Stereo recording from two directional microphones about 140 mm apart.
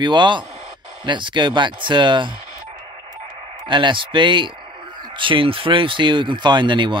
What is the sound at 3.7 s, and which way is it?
Speech, 35° right (ahead or behind).